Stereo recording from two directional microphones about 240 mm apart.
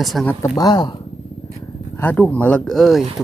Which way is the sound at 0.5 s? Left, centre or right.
Centre.